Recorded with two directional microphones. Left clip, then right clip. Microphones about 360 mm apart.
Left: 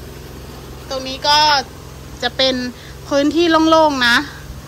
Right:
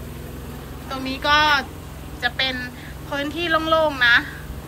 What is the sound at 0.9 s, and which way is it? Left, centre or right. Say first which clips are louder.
A woman's voice: left 4 dB; centre.